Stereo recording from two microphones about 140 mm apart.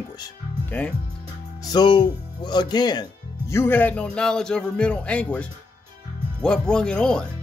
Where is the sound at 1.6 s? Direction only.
30° left (ahead or behind).